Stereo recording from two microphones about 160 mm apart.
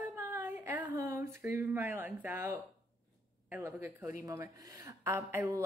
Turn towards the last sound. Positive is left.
turn(degrees=-15)  # may be behind; listen again after turning